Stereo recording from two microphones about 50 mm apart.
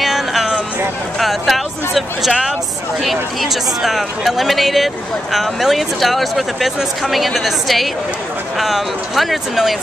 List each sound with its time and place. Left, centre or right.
0.0 s music: centre
1.2 s speech: centre